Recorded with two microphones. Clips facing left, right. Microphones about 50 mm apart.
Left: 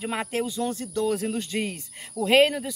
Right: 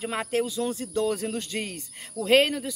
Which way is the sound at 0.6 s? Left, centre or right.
Centre.